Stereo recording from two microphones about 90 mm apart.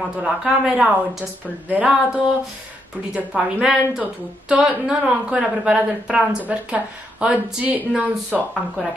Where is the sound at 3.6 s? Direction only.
5° right (ahead or behind).